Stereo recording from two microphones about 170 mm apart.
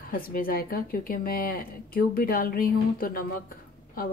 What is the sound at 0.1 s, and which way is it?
Speech, 60° left (ahead or behind).